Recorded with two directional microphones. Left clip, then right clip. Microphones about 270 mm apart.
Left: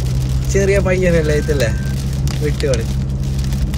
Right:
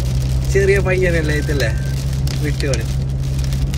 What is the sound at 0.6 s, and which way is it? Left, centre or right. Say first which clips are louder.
Speech: even; centre.